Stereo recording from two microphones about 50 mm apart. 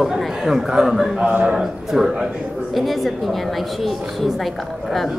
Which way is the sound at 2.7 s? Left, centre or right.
Centre.